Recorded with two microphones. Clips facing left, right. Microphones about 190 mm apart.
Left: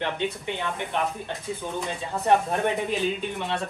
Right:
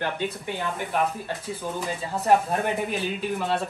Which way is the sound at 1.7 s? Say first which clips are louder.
Right 1 dB; centre (ahead or behind).